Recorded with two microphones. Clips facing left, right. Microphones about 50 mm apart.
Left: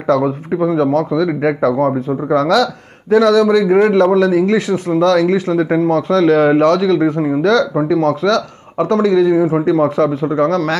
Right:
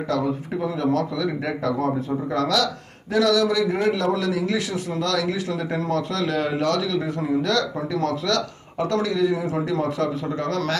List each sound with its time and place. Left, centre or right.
0.1 s a man's voice: left
1.8 s a man's voice: left
5.8 s a man's voice: left
6.2 s a man's voice: left